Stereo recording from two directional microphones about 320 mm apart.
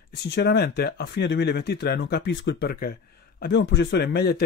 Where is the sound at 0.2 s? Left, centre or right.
Left.